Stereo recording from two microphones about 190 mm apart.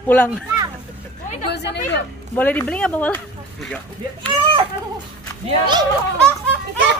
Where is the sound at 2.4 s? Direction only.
10° left (ahead or behind).